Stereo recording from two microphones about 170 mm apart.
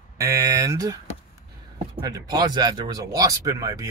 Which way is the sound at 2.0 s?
25° right (ahead or behind).